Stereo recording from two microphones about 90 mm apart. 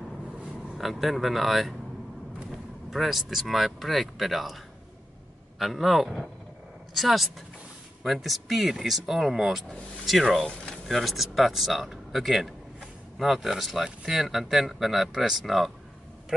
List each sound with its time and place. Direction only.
0.7 s speech: centre (ahead or behind)
5.6 s speech: centre (ahead or behind)